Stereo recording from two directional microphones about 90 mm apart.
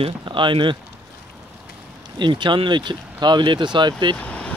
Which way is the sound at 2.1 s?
60° right (ahead or behind).